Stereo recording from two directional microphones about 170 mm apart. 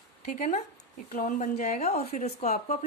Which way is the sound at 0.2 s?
50° left (ahead or behind).